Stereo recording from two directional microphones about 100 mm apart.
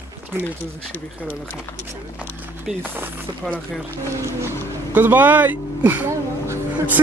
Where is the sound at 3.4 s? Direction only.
5° left (ahead or behind).